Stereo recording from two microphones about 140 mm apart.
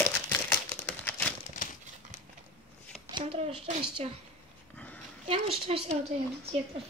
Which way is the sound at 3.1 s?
40° right (ahead or behind).